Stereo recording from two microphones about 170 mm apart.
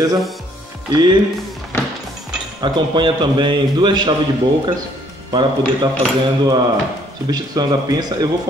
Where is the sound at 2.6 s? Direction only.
25° right (ahead or behind).